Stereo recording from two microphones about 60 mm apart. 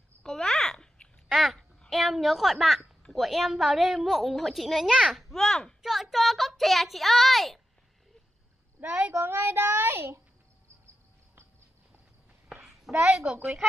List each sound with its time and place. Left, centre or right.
0.2 s a sound: centre
1.9 s a woman's voice: centre
5.8 s a woman's voice: centre
8.8 s a child's voice: centre
9.2 s a child's voice: right
12.9 s a woman's voice: centre